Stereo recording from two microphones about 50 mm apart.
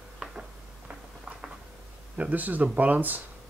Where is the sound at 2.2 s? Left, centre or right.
Right.